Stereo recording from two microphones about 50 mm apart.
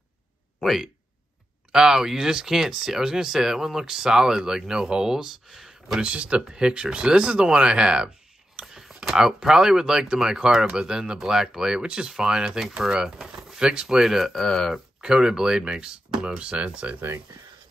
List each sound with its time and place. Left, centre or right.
0.6 s speech: centre
5.9 s speech: right
8.5 s speech: centre
14.3 s speech: centre
15.0 s speech: centre